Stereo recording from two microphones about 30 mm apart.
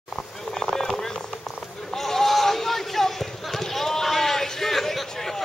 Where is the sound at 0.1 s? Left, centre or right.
Centre.